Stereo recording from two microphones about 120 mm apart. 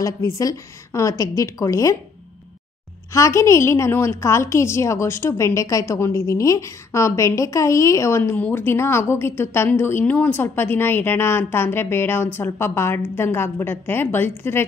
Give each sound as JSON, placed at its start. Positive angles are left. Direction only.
{"t": 0.0, "sound": "a woman's voice", "side_deg": 30}
{"t": 3.1, "sound": "a woman's voice", "side_deg": 25}